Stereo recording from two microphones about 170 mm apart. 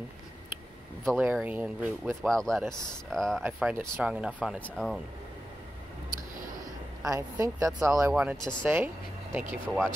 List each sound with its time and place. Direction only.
1.0 s speech: 5° right (ahead or behind)
2.2 s speech: centre (ahead or behind)
4.6 s speech: 5° left (ahead or behind)
7.1 s speech: 15° right (ahead or behind)
8.1 s speech: 5° right (ahead or behind)